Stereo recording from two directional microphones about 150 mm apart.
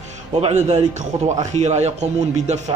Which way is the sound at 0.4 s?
45° right (ahead or behind).